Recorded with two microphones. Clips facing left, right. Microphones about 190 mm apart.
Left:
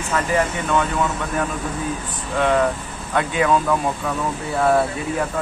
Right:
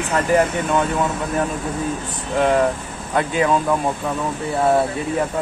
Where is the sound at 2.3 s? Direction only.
30° right (ahead or behind).